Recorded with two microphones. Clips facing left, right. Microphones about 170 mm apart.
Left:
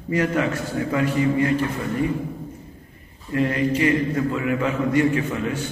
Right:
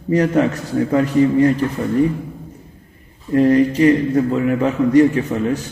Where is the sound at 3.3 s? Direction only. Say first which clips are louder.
Right 8 dB; 40° right (ahead or behind).